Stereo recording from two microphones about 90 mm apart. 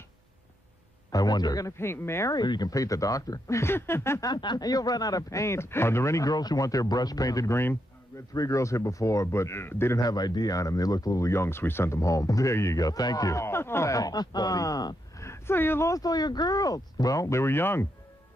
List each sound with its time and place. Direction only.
1.1 s speech: 50° left (ahead or behind)
1.8 s speech: 30° left (ahead or behind)
2.3 s speech: 55° left (ahead or behind)
2.7 s speech: 40° left (ahead or behind)
4.2 s speech: 55° left (ahead or behind); by 9.9 s 25° left (ahead or behind)
9.9 s speech: 45° left (ahead or behind)
15.2 s speech: 30° left (ahead or behind)
15.9 s speech: 45° left (ahead or behind); by 17.8 s 25° left (ahead or behind)